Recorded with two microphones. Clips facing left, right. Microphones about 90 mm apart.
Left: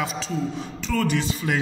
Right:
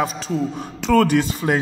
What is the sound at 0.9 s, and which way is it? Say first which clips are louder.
Speech: right 8 dB; 55° right (ahead or behind).